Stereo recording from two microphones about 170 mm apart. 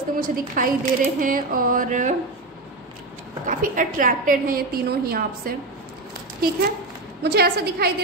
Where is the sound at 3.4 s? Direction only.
55° right (ahead or behind).